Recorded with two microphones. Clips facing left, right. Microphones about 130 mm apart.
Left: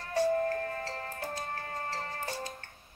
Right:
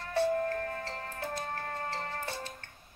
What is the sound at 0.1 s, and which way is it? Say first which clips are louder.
Music: left 1 dB; 40° left (ahead or behind).